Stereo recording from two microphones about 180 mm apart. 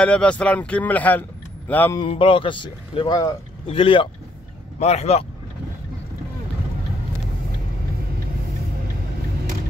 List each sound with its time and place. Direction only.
0.0 s speech: 5° left (ahead or behind)
2.0 s a man's voice: 30° left (ahead or behind)